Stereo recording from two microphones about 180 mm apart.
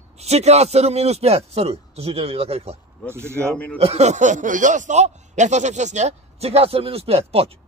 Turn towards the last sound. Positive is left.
turn(degrees=-35)  # may be behind; listen again after turning